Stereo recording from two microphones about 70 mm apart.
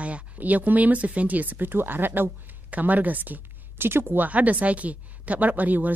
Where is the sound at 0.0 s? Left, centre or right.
Right.